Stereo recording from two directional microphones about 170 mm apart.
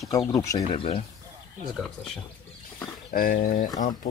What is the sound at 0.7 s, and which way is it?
Speech, 35° left (ahead or behind).